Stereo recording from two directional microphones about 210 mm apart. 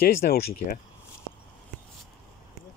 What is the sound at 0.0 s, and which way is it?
Speech, 45° left (ahead or behind).